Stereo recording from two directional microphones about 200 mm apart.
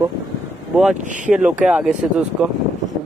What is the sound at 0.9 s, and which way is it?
Speech, 40° right (ahead or behind).